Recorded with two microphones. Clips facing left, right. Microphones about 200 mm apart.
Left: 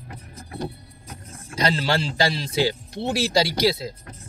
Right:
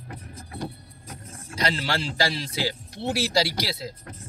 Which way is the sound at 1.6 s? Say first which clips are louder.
Left 4 dB; 25° left (ahead or behind).